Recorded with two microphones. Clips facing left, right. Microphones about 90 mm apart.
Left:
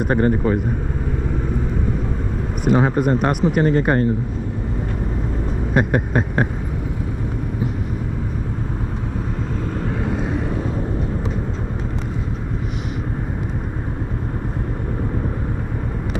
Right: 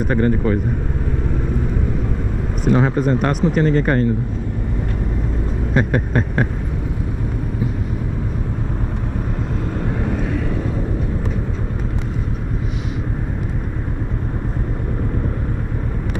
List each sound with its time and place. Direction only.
0.1 s speech: 25° left (ahead or behind)
2.6 s speech: 15° left (ahead or behind)
3.2 s a sound: 15° left (ahead or behind)
3.6 s speech: 25° left (ahead or behind)
5.8 s a sound: 15° left (ahead or behind)
10.1 s vehicle: 25° left (ahead or behind)